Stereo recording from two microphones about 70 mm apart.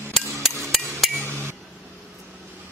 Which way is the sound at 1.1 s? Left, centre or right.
Right.